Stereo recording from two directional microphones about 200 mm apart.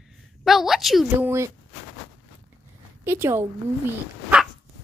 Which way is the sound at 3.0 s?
10° right (ahead or behind).